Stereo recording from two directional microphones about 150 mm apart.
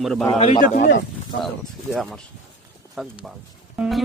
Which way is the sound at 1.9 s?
Centre (ahead or behind).